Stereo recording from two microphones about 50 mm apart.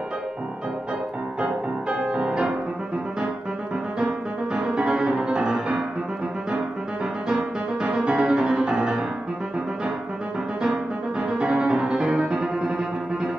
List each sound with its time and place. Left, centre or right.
1.4 s music: right
4.6 s music: centre
7.2 s music: centre
10.6 s music: centre